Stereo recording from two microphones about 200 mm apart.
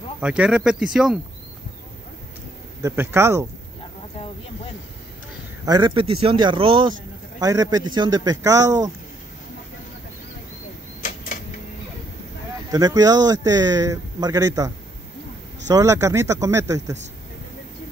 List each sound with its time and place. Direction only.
0.2 s speech: 5° right (ahead or behind)
2.8 s speech: 10° right (ahead or behind)
5.7 s speech: 20° right (ahead or behind)
12.7 s speech: 20° right (ahead or behind)
15.7 s speech: 15° right (ahead or behind)